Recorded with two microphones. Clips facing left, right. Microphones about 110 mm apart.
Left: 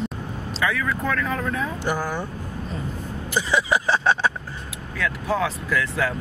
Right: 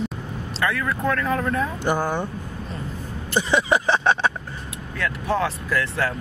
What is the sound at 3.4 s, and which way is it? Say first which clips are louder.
Speech: right 2 dB; 25° right (ahead or behind).